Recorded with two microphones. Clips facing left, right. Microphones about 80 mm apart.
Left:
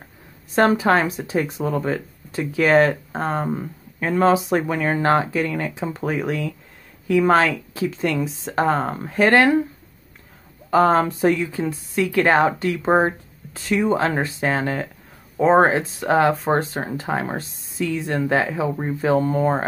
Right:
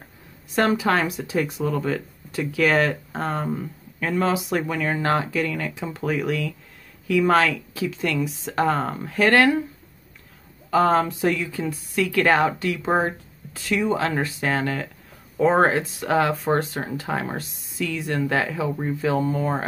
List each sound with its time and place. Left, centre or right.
0.6 s speech: left
10.7 s speech: left